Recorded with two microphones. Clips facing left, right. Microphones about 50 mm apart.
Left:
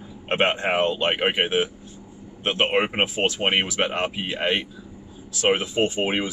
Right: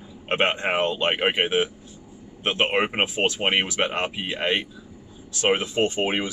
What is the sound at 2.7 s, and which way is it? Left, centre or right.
A man's voice, centre.